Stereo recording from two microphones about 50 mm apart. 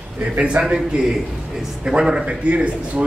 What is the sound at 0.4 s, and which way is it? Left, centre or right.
Speech, centre.